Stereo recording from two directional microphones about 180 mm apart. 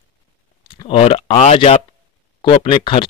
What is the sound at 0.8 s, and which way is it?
Speech, 35° left (ahead or behind).